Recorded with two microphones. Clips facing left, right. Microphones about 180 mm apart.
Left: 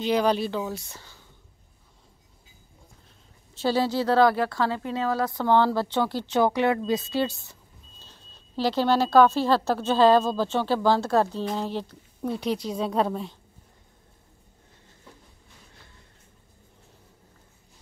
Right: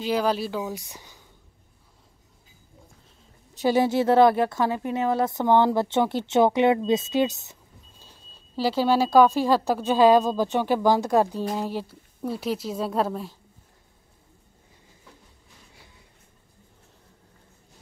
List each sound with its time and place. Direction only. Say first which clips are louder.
0.0 s a woman's voice: left 1 dB; 5° right (ahead or behind)
3.6 s speech: right 3 dB; 20° right (ahead or behind)
8.0 s a woman's voice: even; 10° right (ahead or behind)